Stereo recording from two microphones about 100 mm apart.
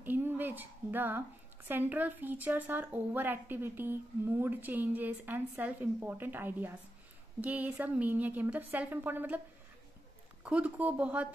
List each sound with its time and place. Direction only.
0.0 s a woman's voice: 20° right (ahead or behind)
10.4 s a woman's voice: 10° right (ahead or behind)